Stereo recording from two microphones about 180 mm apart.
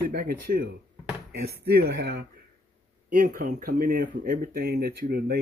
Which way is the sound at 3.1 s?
50° right (ahead or behind).